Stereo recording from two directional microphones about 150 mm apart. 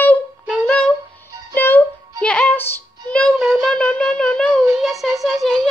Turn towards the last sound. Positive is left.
turn(degrees=0)  # may be behind; listen again after turning